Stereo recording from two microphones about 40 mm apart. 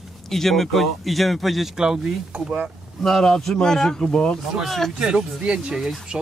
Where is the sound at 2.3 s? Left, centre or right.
Right.